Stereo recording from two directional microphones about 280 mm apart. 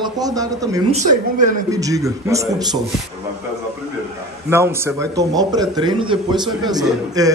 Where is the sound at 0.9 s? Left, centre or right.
Right.